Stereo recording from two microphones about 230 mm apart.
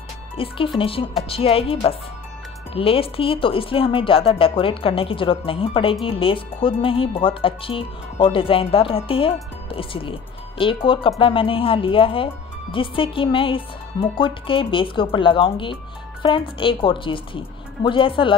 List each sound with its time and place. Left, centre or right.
0.4 s speech: left